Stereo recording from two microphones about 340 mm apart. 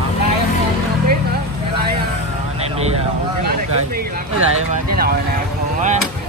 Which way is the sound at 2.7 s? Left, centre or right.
Centre.